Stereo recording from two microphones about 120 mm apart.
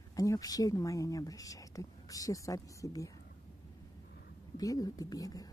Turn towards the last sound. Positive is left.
turn(degrees=30)  # may be behind; listen again after turning